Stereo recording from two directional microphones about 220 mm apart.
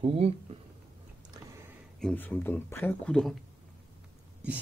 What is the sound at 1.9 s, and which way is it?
Speech, 5° left (ahead or behind).